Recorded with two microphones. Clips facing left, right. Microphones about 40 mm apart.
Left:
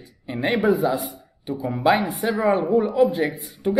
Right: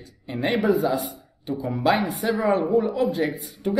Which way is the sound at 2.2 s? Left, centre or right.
Centre.